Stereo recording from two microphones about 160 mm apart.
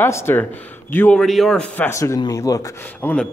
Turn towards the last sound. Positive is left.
turn(degrees=10)  # may be behind; listen again after turning